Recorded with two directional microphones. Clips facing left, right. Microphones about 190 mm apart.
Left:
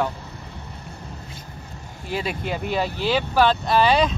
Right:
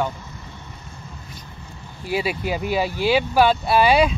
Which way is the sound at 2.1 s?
5° right (ahead or behind).